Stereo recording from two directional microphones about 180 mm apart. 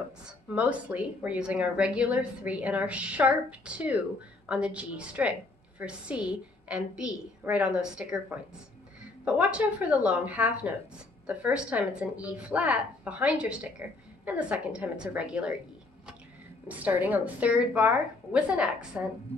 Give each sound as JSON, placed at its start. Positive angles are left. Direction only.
{"t": 0.6, "sound": "a woman's voice", "side_deg": -5}
{"t": 16.6, "sound": "a woman's voice", "side_deg": -10}